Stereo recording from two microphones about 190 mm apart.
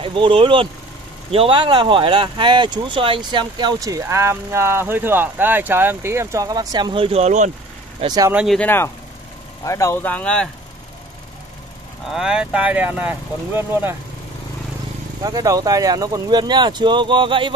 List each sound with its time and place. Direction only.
0.0 s speech: 30° right (ahead or behind)
8.0 s speech: 20° right (ahead or behind)
8.4 s speech: centre (ahead or behind)
8.6 s speech: 10° left (ahead or behind)
12.1 s speech: 5° right (ahead or behind)
15.2 s speech: 20° right (ahead or behind)